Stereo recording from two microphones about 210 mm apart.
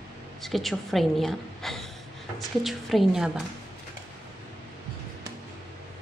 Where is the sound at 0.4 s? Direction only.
Centre (ahead or behind).